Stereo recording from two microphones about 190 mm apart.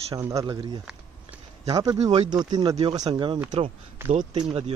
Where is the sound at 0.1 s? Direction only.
15° right (ahead or behind).